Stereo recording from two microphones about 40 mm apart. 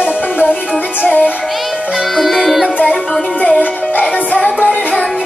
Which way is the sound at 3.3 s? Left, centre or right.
Left.